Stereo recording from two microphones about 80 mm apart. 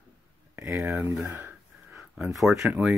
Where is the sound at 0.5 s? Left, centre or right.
Right.